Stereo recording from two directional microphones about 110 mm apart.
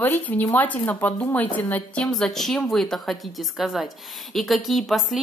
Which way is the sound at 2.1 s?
5° left (ahead or behind).